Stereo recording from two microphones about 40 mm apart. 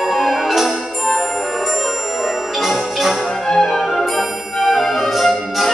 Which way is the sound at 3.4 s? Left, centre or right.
Centre.